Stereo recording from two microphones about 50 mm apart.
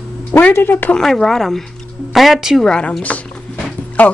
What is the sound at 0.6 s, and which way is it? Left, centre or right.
Speech, left.